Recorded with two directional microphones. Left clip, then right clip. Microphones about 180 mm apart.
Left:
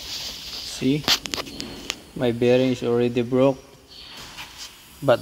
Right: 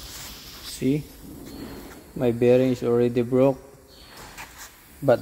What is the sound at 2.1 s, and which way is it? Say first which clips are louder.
Speech: even; 15° right (ahead or behind).